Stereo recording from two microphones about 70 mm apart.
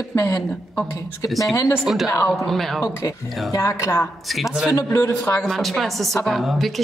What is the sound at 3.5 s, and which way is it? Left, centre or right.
Speech, left.